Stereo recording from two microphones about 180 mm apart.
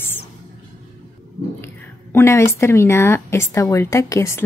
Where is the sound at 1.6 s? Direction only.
15° left (ahead or behind).